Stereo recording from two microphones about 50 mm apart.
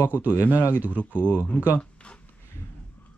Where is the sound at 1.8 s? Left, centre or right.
Left.